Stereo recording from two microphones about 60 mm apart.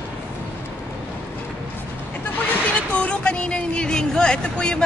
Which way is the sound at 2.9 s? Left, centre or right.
Left.